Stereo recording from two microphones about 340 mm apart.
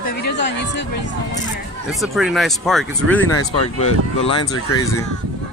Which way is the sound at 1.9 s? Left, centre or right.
Centre.